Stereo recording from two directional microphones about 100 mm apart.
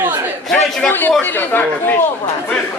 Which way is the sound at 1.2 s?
20° left (ahead or behind).